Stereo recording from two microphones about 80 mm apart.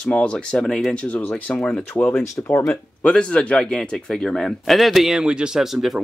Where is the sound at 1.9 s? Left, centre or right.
Left.